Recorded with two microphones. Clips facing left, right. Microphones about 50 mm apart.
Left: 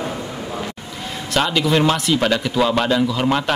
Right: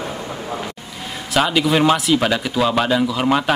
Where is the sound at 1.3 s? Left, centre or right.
Centre.